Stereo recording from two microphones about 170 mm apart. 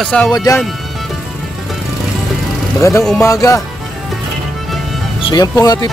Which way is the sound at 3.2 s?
20° left (ahead or behind).